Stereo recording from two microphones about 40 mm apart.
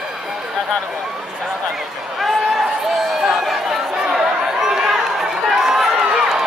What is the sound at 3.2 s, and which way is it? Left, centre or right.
Chatter, centre.